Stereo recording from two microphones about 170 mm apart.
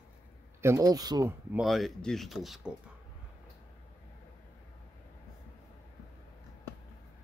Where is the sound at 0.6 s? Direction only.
20° right (ahead or behind).